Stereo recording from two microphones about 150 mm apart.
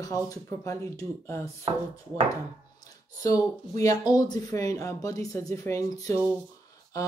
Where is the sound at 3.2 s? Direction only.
20° left (ahead or behind).